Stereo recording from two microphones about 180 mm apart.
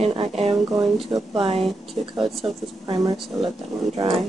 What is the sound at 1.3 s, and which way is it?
Speech, 30° right (ahead or behind).